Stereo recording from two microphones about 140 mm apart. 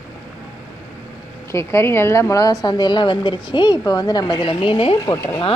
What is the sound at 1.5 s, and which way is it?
A woman's voice, 20° left (ahead or behind).